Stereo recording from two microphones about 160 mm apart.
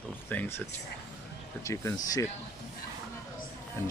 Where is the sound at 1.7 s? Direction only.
20° left (ahead or behind).